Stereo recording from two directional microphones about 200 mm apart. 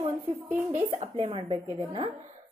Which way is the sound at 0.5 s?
10° right (ahead or behind).